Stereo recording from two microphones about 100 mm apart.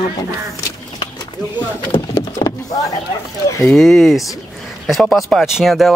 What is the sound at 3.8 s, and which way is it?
Speech, centre (ahead or behind).